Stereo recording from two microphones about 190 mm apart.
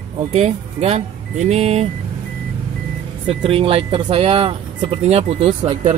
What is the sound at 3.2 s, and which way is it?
Speech, 30° right (ahead or behind).